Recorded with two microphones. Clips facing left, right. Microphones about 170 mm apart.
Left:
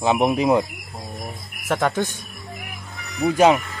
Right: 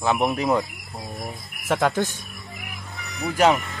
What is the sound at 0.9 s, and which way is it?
Cricket, 5° right (ahead or behind).